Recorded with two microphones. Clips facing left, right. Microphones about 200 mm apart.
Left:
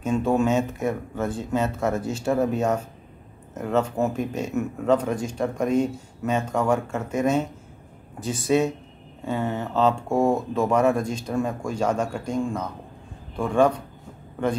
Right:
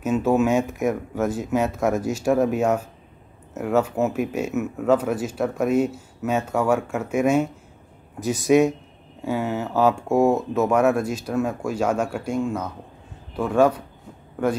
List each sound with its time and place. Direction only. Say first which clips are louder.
0.0 s speech: right 2 dB; 5° right (ahead or behind)